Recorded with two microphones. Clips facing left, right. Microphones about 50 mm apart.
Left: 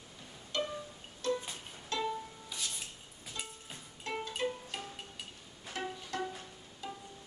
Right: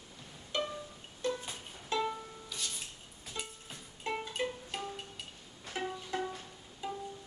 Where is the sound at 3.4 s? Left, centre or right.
Centre.